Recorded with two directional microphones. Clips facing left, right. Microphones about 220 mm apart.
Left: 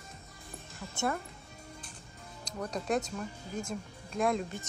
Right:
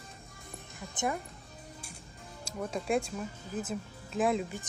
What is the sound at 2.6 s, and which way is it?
Speech, 5° right (ahead or behind).